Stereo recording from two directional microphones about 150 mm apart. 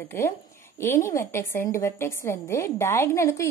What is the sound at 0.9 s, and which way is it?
Speech, 20° left (ahead or behind).